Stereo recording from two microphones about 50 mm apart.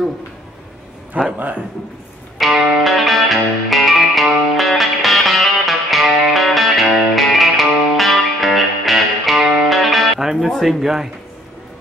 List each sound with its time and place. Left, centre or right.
1.1 s a man's voice: right
2.3 s music: centre
10.5 s speech: centre